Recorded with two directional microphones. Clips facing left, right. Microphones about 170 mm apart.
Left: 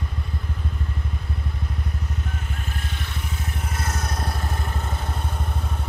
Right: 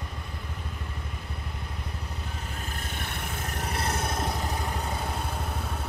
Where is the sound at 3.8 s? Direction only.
30° right (ahead or behind).